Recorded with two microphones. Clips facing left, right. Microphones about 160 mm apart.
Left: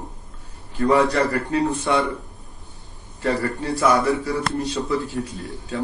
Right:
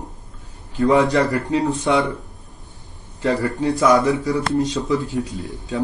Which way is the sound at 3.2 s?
20° right (ahead or behind).